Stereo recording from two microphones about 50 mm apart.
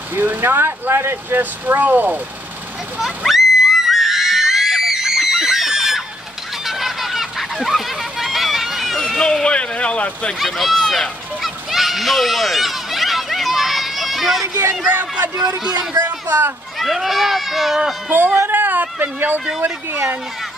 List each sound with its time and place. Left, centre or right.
0.1 s speech: right
3.0 s screaming: centre
6.6 s fowl: centre
9.2 s speech: centre
10.7 s a sound: centre
14.9 s speech: right
15.3 s a man's voice: centre
16.0 s speech: right
16.8 s speech: centre
18.1 s speech: right
18.5 s a sound: right